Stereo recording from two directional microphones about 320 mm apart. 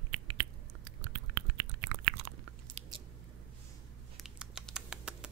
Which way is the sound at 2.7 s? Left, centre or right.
Right.